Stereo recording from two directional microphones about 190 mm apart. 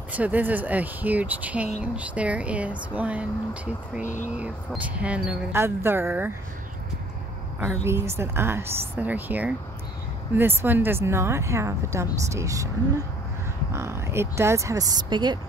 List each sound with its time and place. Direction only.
0.1 s speech: 10° right (ahead or behind)
4.0 s speech: 40° left (ahead or behind)
4.3 s speech: 5° right (ahead or behind)
7.6 s speech: 15° right (ahead or behind)